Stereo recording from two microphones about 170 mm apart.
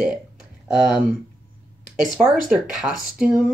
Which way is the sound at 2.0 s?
Centre (ahead or behind).